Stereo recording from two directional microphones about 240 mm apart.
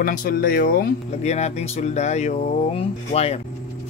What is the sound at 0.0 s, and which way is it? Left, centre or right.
Speech, left.